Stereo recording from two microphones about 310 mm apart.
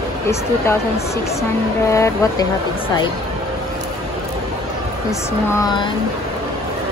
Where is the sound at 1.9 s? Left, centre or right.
Centre.